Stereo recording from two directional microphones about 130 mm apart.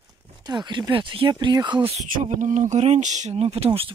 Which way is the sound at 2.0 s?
80° right.